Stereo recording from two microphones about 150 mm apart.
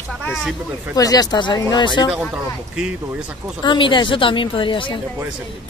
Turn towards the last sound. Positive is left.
turn(degrees=35)  # may be behind; listen again after turning